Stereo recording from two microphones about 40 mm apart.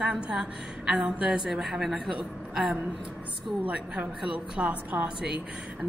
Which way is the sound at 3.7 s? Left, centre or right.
Right.